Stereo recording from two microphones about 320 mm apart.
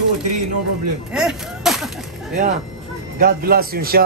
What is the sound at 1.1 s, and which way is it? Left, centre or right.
Speech, centre.